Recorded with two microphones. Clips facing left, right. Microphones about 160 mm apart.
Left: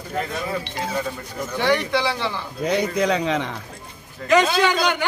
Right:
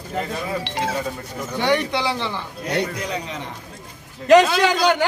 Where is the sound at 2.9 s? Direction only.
90° left.